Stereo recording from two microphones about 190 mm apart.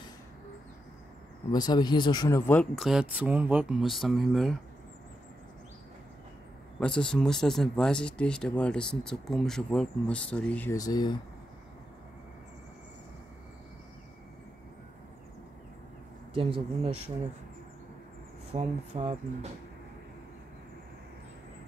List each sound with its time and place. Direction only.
1.5 s speech: 20° left (ahead or behind); by 4.6 s centre (ahead or behind)
6.8 s speech: 5° left (ahead or behind); by 11.1 s 20° left (ahead or behind)
16.3 s speech: 30° right (ahead or behind)
18.5 s speech: 30° right (ahead or behind)